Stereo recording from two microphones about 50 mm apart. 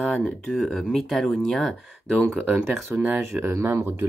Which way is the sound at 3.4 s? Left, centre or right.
Right.